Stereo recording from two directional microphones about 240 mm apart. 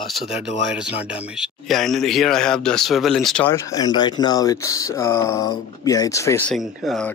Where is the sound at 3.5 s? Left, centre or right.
Centre.